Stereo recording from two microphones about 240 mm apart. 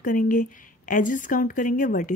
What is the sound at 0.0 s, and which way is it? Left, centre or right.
Speech, left.